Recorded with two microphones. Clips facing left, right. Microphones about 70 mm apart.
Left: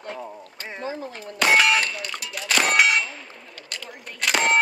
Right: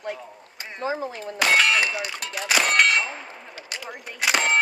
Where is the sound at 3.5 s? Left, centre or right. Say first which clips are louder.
Right 2 dB; centre.